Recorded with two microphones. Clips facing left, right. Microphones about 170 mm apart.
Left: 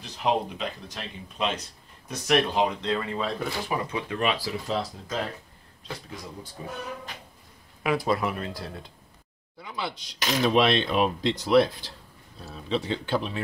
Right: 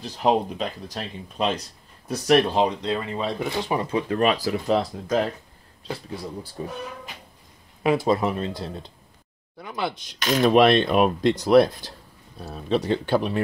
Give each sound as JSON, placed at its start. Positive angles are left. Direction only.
{"t": 0.0, "sound": "speech", "side_deg": -40}
{"t": 2.6, "sound": "speech", "side_deg": -20}
{"t": 5.9, "sound": "speech", "side_deg": -35}
{"t": 7.8, "sound": "speech", "side_deg": -25}
{"t": 9.6, "sound": "speech", "side_deg": -55}